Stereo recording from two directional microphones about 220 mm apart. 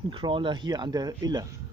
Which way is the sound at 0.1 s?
20° right (ahead or behind).